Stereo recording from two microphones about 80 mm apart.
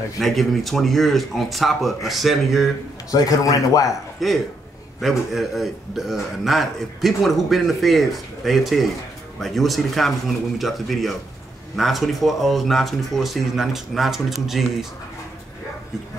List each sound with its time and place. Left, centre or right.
0.2 s speech: centre
3.1 s speech: left
4.2 s speech: centre